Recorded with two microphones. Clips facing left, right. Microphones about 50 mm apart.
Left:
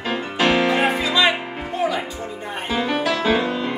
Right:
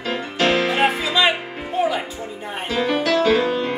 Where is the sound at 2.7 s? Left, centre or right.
Centre.